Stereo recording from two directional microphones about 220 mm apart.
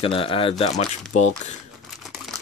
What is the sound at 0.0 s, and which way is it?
Speech, 25° left (ahead or behind).